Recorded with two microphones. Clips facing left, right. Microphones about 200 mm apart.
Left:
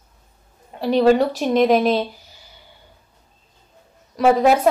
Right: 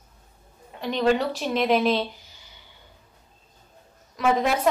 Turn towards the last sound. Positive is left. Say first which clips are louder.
# left 7 dB
turn(degrees=40)  # may be behind; listen again after turning